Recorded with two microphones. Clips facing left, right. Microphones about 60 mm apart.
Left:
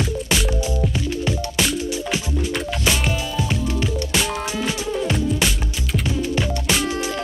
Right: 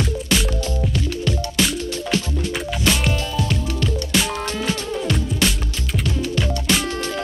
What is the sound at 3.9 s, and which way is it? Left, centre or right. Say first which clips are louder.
Music: right 1 dB; centre.